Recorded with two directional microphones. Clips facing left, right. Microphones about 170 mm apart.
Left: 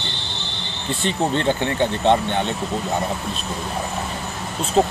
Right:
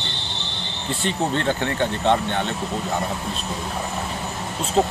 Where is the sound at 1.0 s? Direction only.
20° left (ahead or behind).